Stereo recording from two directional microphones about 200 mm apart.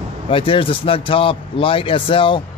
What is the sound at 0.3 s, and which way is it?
Speech, 25° left (ahead or behind).